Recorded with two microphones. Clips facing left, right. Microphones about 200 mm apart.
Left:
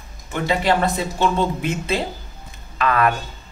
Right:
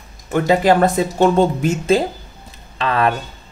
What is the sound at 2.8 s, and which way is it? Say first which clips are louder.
Speech: right 1 dB; 30° right (ahead or behind).